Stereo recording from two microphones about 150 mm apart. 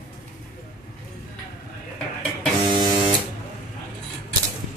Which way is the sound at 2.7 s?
30° right (ahead or behind).